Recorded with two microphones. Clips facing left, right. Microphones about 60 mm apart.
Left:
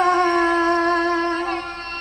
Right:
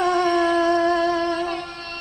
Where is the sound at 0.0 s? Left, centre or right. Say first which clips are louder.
Left 2 dB; left.